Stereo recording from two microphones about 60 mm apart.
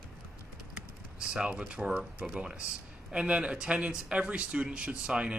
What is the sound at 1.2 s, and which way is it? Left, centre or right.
Speech, centre.